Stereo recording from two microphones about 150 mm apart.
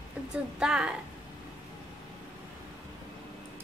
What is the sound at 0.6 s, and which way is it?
Speech, 5° right (ahead or behind).